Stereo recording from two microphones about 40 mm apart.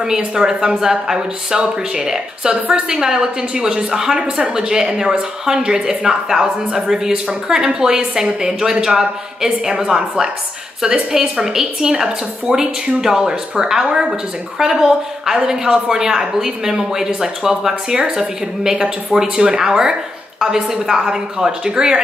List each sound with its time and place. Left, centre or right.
0.0 s a woman's voice: centre